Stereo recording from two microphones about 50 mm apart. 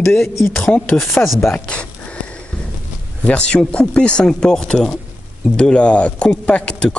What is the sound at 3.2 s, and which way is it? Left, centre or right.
Speech, left.